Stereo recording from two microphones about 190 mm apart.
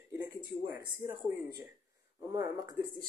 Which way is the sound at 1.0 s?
20° right (ahead or behind).